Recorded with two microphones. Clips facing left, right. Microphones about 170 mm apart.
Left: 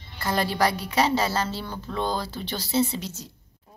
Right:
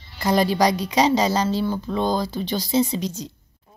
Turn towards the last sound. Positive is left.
turn(degrees=-15)  # may be behind; listen again after turning